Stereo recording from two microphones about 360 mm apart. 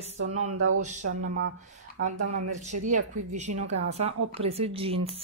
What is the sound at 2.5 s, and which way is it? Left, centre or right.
Speech, centre.